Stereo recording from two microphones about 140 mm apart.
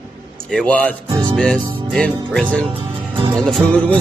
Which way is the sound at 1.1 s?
30° right (ahead or behind).